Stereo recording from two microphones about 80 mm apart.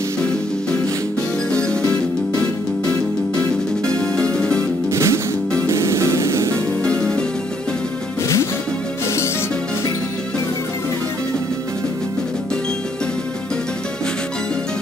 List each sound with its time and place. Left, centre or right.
1.5 s music: centre
3.8 s music: centre
4.9 s music: right
6.8 s music: centre